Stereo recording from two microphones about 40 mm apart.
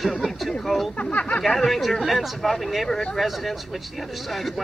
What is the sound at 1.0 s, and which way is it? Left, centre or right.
Speech, left.